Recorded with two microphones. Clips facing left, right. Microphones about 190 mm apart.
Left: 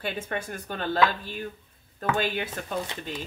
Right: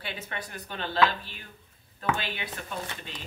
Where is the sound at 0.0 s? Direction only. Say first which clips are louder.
Left 6 dB; 45° left (ahead or behind).